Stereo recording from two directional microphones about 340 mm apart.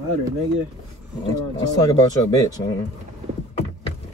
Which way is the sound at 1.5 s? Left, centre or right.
Centre.